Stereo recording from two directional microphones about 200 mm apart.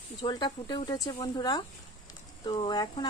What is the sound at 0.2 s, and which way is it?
Speech, 20° left (ahead or behind).